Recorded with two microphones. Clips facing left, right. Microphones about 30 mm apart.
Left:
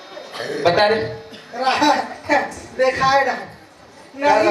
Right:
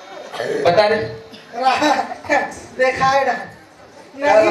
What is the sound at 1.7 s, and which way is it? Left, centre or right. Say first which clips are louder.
Speech: right 1 dB; left.